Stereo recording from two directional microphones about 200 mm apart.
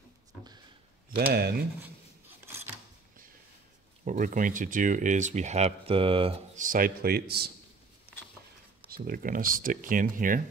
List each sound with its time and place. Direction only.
1.3 s speech: 55° right (ahead or behind)
1.8 s scissors: 10° right (ahead or behind)
4.0 s speech: 40° right (ahead or behind)
8.8 s speech: 45° right (ahead or behind)